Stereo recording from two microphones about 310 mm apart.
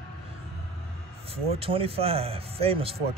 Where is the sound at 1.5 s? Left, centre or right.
Centre.